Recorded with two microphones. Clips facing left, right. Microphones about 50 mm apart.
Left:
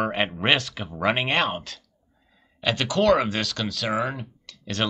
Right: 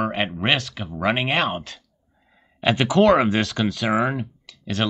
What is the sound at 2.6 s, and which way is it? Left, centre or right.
Speech, centre.